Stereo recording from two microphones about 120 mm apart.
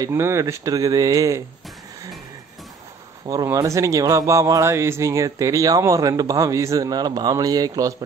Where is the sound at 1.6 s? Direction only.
Centre (ahead or behind).